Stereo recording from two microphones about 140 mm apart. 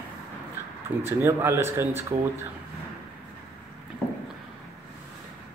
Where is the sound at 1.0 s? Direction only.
15° right (ahead or behind).